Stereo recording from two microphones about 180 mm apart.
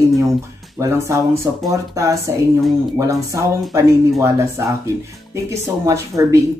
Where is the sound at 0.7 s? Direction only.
15° right (ahead or behind).